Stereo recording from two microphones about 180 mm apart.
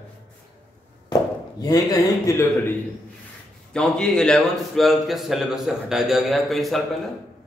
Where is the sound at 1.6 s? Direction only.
20° left (ahead or behind).